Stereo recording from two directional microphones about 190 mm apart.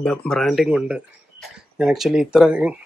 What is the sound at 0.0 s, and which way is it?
Speech, 5° left (ahead or behind).